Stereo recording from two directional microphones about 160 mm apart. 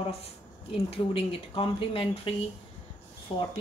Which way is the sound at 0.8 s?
35° left (ahead or behind).